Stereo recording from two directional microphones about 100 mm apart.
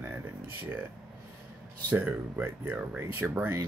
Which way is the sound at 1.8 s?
20° right (ahead or behind).